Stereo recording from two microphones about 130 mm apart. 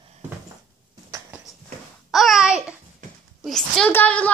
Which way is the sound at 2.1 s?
Centre (ahead or behind).